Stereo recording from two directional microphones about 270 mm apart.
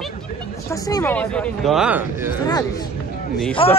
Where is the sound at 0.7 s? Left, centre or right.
Centre.